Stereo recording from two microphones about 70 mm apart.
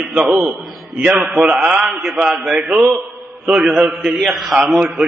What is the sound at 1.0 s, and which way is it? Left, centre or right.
Speech, centre.